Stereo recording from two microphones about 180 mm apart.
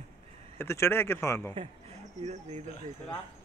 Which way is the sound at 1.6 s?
35° right (ahead or behind).